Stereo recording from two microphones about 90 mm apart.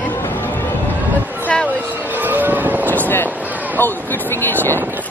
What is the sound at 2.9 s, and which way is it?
Vehicle, 20° left (ahead or behind).